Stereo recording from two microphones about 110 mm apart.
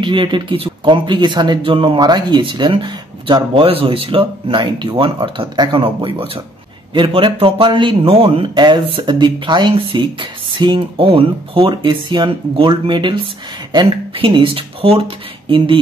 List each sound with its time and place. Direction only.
0.0 s speech: 45° right (ahead or behind)
9.8 s speech: 55° right (ahead or behind)